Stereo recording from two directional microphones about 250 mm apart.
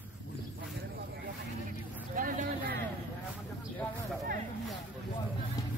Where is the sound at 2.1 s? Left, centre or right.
Right.